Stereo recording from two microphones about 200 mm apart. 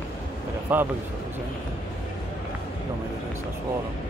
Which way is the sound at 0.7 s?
10° right (ahead or behind).